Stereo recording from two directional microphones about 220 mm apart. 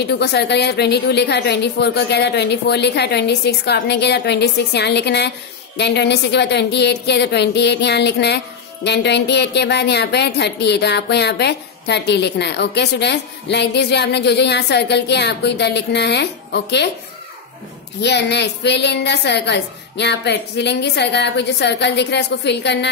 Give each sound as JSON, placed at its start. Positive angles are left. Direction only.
{"t": 0.0, "sound": "speech", "side_deg": 50}
{"t": 18.0, "sound": "speech", "side_deg": 50}